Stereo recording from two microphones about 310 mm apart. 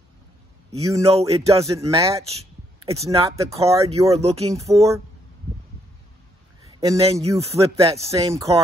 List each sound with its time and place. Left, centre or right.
0.7 s speech: centre
6.8 s speech: centre